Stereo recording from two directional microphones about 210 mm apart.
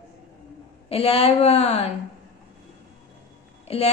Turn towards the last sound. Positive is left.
turn(degrees=30)  # may be behind; listen again after turning